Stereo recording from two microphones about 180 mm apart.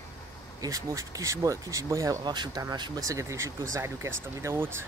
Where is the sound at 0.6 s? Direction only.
20° right (ahead or behind).